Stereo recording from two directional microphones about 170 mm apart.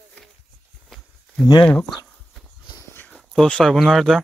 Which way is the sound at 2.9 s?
10° left (ahead or behind).